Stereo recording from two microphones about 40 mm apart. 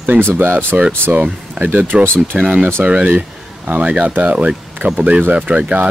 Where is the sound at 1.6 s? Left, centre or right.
Right.